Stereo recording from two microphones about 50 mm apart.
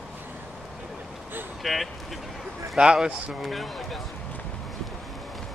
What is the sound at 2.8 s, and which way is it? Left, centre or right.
Speech, centre.